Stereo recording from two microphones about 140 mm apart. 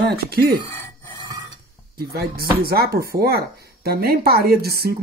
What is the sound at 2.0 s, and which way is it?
A woman's voice, 90° right.